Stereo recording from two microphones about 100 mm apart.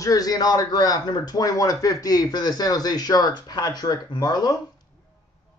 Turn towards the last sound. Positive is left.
turn(degrees=45)  # may be behind; listen again after turning